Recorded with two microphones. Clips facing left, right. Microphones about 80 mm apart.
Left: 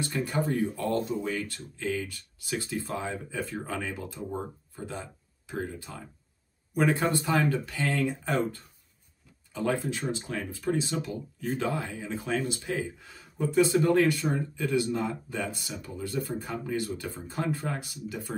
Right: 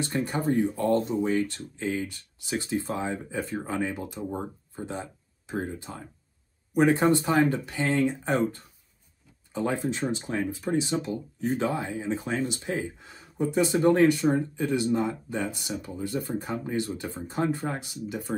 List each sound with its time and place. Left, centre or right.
0.0 s speech: right
11.1 s speech: right